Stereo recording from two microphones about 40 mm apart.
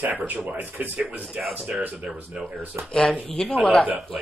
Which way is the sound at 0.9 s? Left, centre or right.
Right.